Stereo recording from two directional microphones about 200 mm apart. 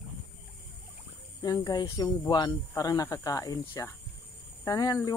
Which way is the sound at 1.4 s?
20° left (ahead or behind).